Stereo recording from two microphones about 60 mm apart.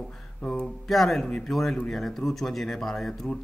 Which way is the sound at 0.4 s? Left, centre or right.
Centre.